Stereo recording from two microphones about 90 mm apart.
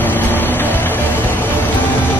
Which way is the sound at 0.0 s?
20° left (ahead or behind).